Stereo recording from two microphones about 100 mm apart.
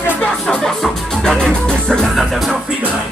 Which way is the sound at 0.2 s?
5° left (ahead or behind).